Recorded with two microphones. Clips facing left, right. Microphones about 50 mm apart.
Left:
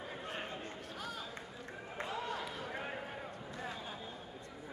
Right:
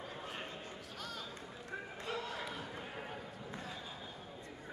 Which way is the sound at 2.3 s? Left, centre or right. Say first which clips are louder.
Left 1 dB; centre.